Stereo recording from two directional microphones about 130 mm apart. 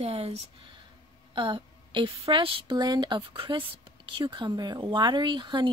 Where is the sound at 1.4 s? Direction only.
40° right (ahead or behind).